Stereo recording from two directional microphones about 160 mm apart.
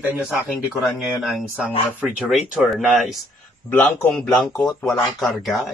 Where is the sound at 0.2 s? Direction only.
Centre (ahead or behind).